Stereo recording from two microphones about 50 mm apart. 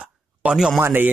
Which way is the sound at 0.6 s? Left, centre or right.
Centre.